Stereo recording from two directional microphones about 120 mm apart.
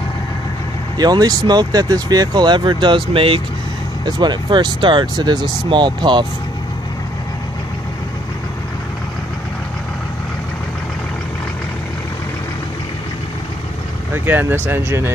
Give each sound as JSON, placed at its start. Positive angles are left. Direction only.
{"t": 0.9, "sound": "speech", "side_deg": -35}
{"t": 4.0, "sound": "speech", "side_deg": -40}
{"t": 14.1, "sound": "speech", "side_deg": -15}